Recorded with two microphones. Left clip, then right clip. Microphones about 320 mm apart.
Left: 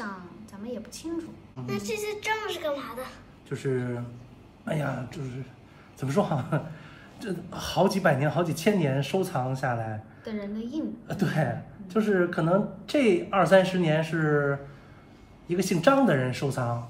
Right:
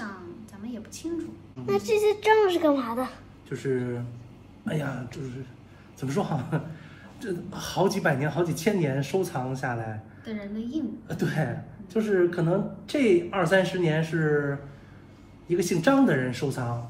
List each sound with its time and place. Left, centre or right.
0.0 s a sound: centre
1.7 s a child's voice: centre
3.7 s a man's voice: left
5.9 s speech: left
10.2 s a woman's voice: centre
11.1 s speech: left
15.5 s speech: left